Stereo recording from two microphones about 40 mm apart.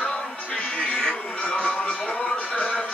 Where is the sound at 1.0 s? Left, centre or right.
Left.